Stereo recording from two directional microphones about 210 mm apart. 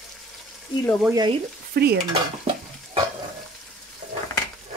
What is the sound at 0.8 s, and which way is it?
Speech, centre (ahead or behind).